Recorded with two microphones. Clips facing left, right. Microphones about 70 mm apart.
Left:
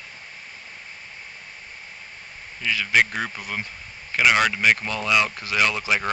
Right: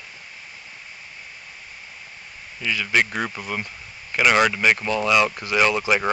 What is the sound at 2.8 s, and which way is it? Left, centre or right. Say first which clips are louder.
Speech: left 1 dB; centre.